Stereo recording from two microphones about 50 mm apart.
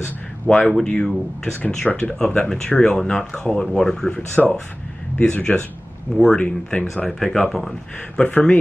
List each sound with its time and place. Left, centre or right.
0.0 s speech: left
4.1 s speech: left
5.1 s speech: centre
7.1 s speech: centre
8.2 s speech: left